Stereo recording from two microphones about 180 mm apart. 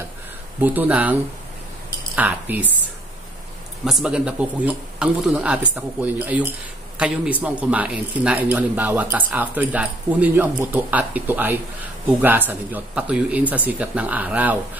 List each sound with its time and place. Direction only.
0.6 s speech: 10° right (ahead or behind)
2.1 s speech: 10° right (ahead or behind)
3.8 s speech: 5° right (ahead or behind)